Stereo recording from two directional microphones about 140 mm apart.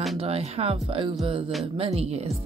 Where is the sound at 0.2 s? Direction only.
45° right (ahead or behind).